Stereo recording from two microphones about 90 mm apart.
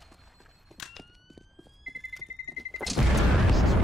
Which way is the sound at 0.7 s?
Centre (ahead or behind).